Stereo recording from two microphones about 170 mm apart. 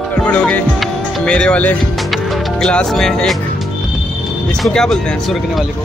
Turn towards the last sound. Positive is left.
turn(degrees=0)  # may be behind; listen again after turning